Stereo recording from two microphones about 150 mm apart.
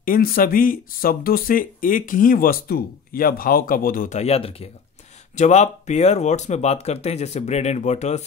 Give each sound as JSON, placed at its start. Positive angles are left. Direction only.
{"t": 0.0, "sound": "speech", "side_deg": 70}
{"t": 4.2, "sound": "speech", "side_deg": 40}
{"t": 5.3, "sound": "speech", "side_deg": 50}